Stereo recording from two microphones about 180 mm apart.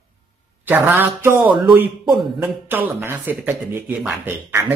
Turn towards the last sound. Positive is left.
turn(degrees=-10)  # may be behind; listen again after turning